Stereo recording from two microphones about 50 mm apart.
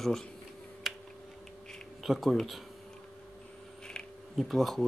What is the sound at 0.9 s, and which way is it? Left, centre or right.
Typing, centre.